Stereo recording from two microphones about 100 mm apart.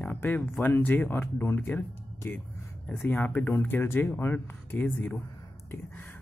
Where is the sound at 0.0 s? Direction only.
15° left (ahead or behind).